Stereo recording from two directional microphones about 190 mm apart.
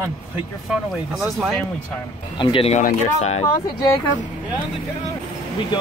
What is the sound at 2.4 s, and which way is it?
Speech, 30° left (ahead or behind).